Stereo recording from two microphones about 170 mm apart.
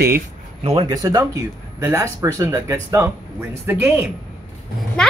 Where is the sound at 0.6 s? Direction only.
35° right (ahead or behind).